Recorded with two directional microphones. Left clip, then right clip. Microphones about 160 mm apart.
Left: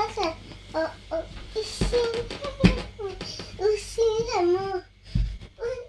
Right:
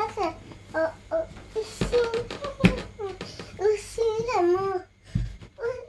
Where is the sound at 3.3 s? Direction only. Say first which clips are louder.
Even; centre (ahead or behind).